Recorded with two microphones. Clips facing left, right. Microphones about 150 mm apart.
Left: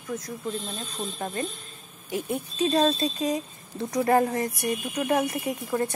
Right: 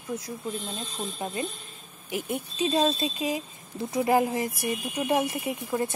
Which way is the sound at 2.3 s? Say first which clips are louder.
Left 2 dB; 30° left (ahead or behind).